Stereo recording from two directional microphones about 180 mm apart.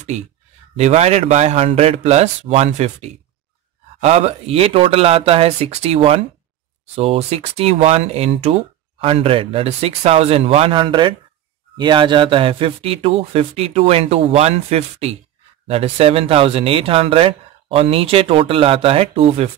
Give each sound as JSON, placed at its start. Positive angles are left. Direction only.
{"t": 0.7, "sound": "speech", "side_deg": -35}